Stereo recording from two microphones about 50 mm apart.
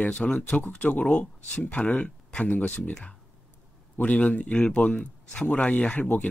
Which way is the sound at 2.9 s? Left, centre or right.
Centre.